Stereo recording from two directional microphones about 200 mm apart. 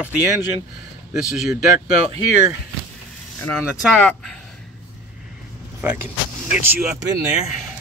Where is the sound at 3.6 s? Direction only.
Centre (ahead or behind).